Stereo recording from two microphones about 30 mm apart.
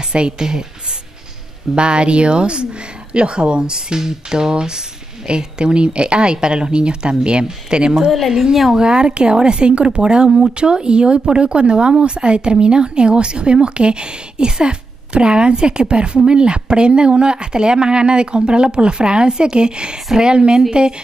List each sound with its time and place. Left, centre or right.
0.1 s speech: right
1.8 s speech: right